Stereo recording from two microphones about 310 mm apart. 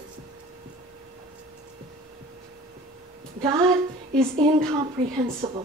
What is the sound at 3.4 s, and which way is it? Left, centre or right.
Speech, centre.